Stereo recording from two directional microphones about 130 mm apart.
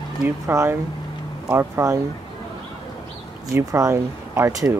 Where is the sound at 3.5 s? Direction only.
25° right (ahead or behind).